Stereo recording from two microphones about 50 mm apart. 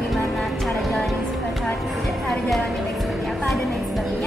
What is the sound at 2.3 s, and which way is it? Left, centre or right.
Speech, centre.